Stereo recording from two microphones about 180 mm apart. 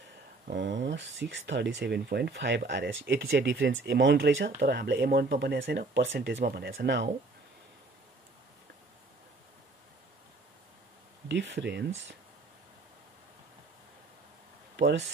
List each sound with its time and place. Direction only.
0.5 s speech: 85° right
11.2 s speech: 80° right
14.8 s speech: 80° right